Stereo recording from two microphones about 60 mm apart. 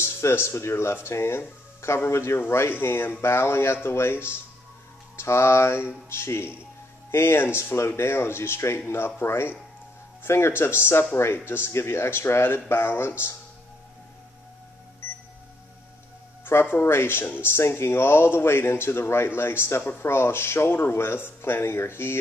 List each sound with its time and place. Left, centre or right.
0.0 s speech: left
16.4 s speech: left